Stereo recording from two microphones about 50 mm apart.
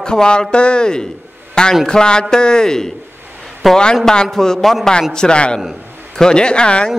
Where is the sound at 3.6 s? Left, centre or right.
Centre.